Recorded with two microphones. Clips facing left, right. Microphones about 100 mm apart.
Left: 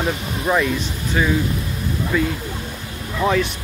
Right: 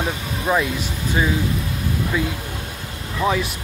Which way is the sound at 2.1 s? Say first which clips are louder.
Left 3 dB; 10° right (ahead or behind).